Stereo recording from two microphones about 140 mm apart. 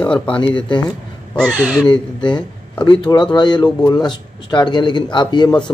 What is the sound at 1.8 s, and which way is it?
A man's voice, 35° left (ahead or behind).